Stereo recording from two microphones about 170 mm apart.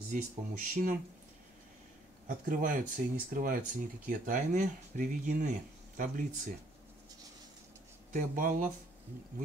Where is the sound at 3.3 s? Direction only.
50° right (ahead or behind).